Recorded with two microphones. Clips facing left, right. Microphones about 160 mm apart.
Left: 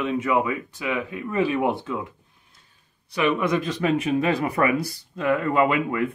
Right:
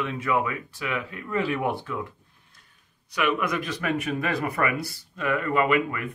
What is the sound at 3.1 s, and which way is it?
Speech, 30° left (ahead or behind).